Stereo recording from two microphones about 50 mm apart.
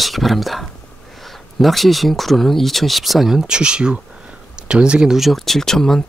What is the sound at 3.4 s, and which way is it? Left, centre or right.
Speech, centre.